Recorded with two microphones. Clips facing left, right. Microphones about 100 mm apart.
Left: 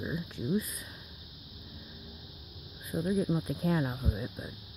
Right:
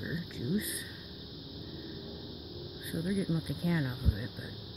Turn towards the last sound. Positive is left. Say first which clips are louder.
# left 2 dB
turn(degrees=35)  # may be behind; listen again after turning